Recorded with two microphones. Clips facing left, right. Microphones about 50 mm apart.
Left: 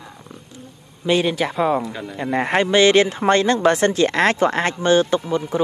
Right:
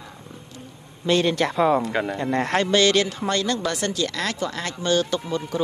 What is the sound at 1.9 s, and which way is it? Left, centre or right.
Speech, right.